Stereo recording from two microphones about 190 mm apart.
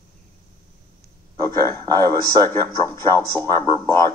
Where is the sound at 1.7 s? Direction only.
15° left (ahead or behind).